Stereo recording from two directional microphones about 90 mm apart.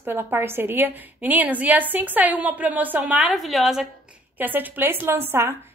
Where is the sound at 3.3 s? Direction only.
Centre (ahead or behind).